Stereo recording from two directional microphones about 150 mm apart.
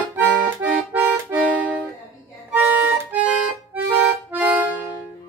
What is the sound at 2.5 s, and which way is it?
Music, 10° right (ahead or behind).